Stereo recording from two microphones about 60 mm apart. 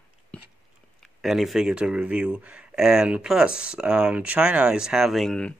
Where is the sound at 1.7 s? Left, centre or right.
Centre.